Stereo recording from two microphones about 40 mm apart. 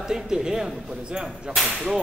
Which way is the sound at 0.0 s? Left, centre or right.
Centre.